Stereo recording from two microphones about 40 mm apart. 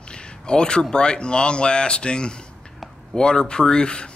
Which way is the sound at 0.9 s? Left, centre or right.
Left.